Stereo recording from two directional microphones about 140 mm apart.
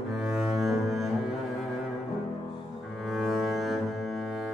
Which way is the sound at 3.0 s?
Centre (ahead or behind).